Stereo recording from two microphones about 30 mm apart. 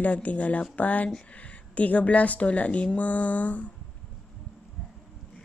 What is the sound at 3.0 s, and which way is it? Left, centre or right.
Speech, left.